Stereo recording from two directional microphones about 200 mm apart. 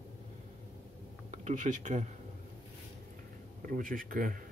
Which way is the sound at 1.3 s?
40° right (ahead or behind).